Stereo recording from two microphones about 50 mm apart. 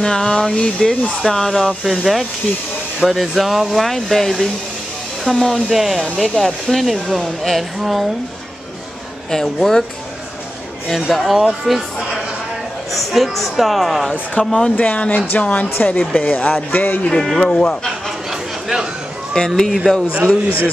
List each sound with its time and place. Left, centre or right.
0.0 s speech: centre
9.3 s speech: centre
11.0 s speech: centre
12.9 s speech: centre
14.4 s a man's voice: left
17.4 s speech: centre
19.3 s speech: centre
20.2 s a man's voice: left